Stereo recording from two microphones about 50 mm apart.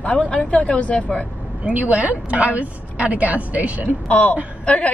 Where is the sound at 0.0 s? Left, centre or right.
Left.